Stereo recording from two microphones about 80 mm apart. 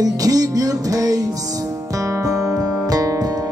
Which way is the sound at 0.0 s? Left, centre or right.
Right.